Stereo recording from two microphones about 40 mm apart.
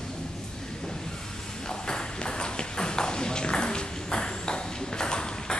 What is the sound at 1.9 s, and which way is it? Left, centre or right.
Ping, left.